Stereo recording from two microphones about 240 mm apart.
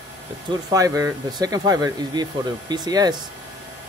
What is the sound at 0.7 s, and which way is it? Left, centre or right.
Speech, centre.